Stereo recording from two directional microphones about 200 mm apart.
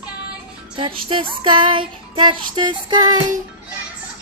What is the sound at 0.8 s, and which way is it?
Child singing, 25° right (ahead or behind).